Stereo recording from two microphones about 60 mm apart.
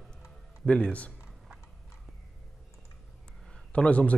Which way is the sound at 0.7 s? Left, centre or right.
Centre.